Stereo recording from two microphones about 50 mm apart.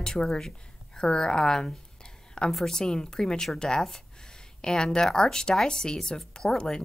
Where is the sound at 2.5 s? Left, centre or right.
Centre.